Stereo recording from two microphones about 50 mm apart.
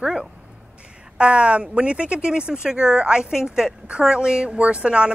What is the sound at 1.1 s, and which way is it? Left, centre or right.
A woman's voice, right.